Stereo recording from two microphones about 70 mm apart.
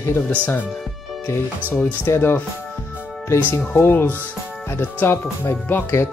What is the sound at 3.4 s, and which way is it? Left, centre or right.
Speech, left.